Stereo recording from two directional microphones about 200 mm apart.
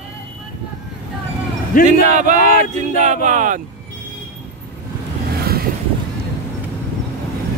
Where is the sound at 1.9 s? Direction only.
40° right (ahead or behind).